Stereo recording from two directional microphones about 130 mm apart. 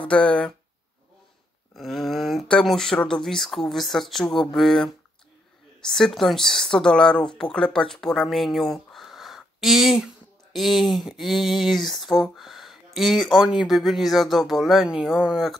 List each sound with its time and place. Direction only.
0.0 s speech: 10° left (ahead or behind)
1.8 s speech: centre (ahead or behind)